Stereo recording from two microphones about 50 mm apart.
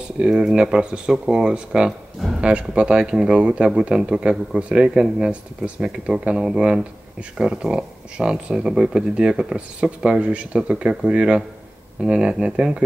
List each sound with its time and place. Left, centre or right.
0.2 s speech: centre